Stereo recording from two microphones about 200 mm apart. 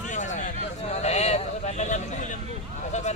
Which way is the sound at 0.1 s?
40° left (ahead or behind).